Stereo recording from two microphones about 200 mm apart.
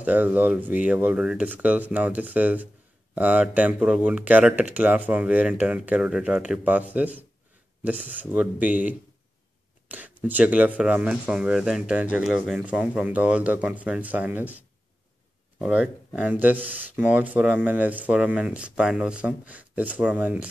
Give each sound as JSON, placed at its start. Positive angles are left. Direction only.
{"t": 0.0, "sound": "speech", "side_deg": -10}
{"t": 15.6, "sound": "speech", "side_deg": -5}